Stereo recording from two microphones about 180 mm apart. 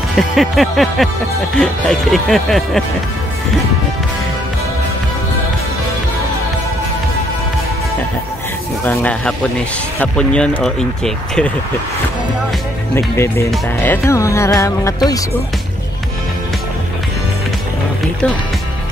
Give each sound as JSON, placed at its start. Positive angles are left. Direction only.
{"t": 0.1, "sound": "music", "side_deg": 0}
{"t": 8.8, "sound": "music", "side_deg": 10}
{"t": 12.9, "sound": "music", "side_deg": 15}